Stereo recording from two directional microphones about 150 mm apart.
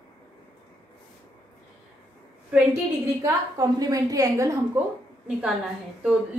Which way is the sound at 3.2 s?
25° right (ahead or behind).